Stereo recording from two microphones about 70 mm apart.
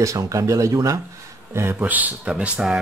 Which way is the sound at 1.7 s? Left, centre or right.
Right.